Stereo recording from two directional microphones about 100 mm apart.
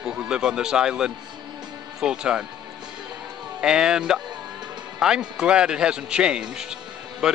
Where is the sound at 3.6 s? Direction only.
5° right (ahead or behind).